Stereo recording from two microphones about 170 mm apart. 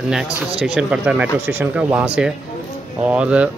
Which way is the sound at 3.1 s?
5° right (ahead or behind).